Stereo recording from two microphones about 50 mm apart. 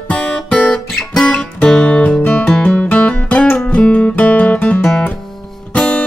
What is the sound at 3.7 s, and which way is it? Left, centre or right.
Guitar, left.